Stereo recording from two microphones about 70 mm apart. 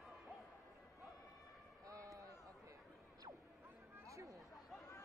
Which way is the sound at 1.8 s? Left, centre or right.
Right.